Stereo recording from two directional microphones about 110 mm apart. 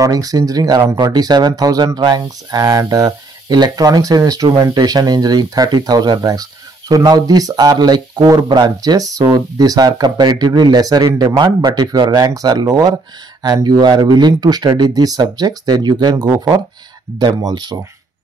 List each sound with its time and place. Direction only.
0.0 s speech: 35° right (ahead or behind)